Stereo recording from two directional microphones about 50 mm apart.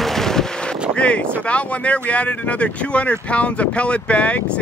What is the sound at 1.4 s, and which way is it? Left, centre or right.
Speech, left.